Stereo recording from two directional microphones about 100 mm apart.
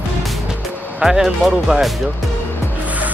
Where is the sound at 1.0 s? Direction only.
5° right (ahead or behind).